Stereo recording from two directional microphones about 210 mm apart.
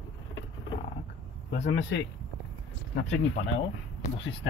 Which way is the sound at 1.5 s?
55° left (ahead or behind).